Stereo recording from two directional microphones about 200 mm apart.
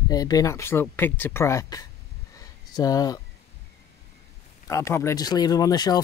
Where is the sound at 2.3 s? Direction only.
20° left (ahead or behind).